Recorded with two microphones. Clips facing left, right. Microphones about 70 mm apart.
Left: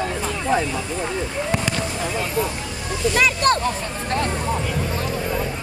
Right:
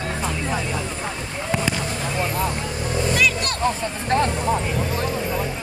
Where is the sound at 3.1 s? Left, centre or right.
Left.